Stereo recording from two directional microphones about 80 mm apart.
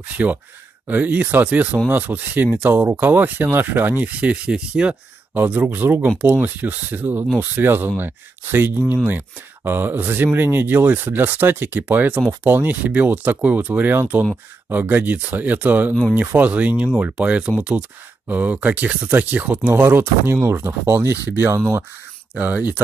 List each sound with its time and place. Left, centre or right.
0.1 s speech: centre
22.3 s speech: centre